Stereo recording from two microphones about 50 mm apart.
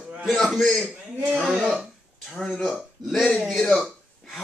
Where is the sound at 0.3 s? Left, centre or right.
Centre.